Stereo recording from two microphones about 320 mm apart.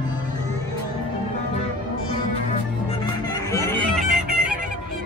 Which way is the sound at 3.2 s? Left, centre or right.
Centre.